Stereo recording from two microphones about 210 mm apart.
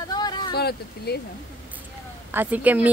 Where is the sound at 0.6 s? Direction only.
50° left (ahead or behind).